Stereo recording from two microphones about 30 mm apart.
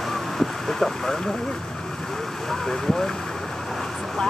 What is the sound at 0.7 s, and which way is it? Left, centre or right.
Speech, centre.